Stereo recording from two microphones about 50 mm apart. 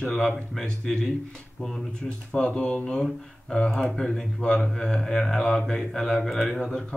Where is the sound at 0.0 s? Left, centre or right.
Centre.